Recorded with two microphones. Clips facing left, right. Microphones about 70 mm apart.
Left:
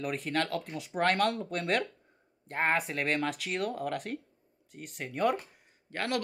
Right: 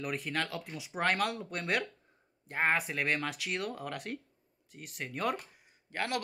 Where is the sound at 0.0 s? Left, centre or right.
Centre.